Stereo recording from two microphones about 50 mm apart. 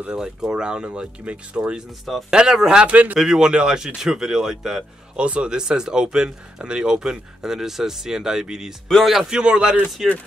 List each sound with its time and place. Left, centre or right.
0.0 s speech: centre
2.9 s speech: right
3.2 s speech: centre
8.8 s speech: centre
9.1 s speech: centre